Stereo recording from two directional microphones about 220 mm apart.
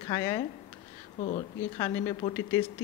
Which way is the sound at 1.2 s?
30° left (ahead or behind).